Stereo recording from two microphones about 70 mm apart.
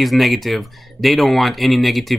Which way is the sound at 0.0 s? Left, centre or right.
Centre.